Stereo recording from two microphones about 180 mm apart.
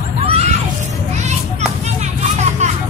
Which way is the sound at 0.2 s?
35° right (ahead or behind).